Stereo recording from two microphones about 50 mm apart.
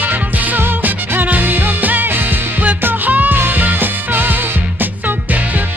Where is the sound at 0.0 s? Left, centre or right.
Right.